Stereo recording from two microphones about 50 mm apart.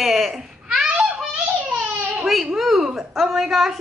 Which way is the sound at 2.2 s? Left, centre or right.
Centre.